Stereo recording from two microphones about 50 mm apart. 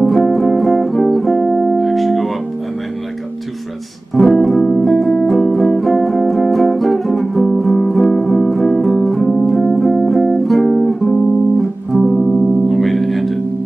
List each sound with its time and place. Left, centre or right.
0.0 s music: centre
4.1 s music: centre
12.3 s music: right
12.6 s music: centre